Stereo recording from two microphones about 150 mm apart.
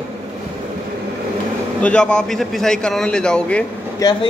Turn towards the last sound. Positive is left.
turn(degrees=30)  # may be behind; listen again after turning